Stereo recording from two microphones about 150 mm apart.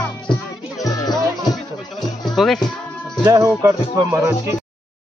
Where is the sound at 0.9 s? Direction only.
25° left (ahead or behind).